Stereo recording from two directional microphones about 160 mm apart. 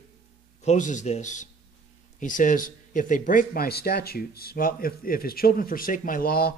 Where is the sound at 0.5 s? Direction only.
50° left (ahead or behind).